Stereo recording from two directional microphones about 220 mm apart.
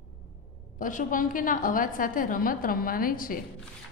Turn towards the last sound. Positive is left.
turn(degrees=40)  # may be behind; listen again after turning